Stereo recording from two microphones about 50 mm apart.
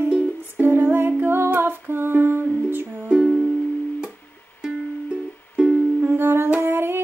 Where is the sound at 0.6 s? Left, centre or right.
Right.